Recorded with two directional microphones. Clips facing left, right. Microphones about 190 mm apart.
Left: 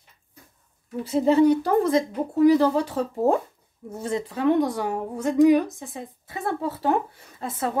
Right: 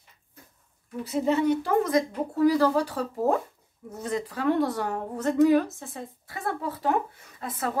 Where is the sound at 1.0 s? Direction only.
30° left (ahead or behind).